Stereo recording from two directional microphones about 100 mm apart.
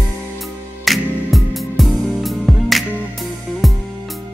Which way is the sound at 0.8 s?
Centre (ahead or behind).